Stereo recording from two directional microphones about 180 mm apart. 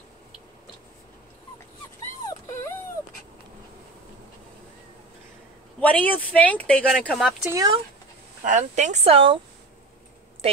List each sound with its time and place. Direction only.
5.8 s speech: 10° left (ahead or behind)
7.5 s speech: 20° right (ahead or behind)
8.5 s speech: 40° right (ahead or behind)